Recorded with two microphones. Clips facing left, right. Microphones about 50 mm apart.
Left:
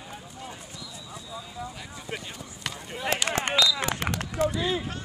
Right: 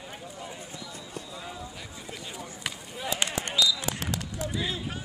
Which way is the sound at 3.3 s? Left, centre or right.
Left.